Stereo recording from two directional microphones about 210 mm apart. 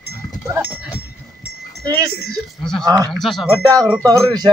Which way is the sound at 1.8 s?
15° right (ahead or behind).